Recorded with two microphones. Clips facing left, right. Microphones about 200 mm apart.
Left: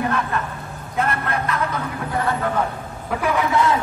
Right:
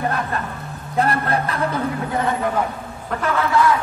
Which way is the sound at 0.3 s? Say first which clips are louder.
Even; 35° right (ahead or behind).